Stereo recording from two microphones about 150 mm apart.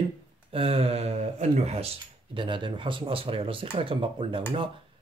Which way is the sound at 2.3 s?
35° right (ahead or behind).